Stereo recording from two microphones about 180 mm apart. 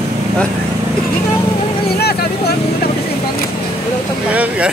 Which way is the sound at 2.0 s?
60° left (ahead or behind).